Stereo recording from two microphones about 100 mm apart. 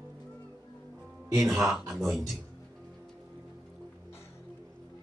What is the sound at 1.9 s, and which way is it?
Speech, centre (ahead or behind).